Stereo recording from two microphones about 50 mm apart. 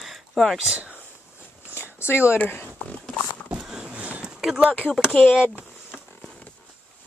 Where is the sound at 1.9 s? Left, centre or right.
Left.